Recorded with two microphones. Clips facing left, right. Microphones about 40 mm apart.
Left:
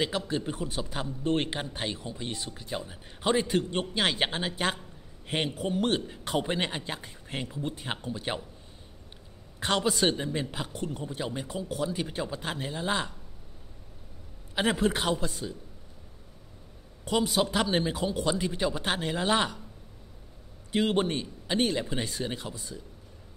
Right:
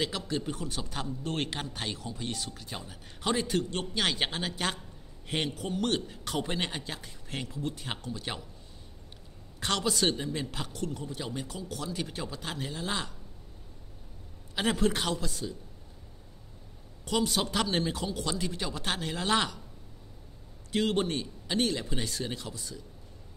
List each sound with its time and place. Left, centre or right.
0.0 s a man's voice: centre
6.8 s speech: left
9.6 s speech: centre
14.5 s a man's voice: centre
15.1 s speech: left
17.0 s a man's voice: centre
20.7 s speech: centre